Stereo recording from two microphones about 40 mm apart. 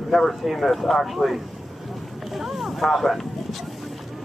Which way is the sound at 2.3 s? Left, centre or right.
Centre.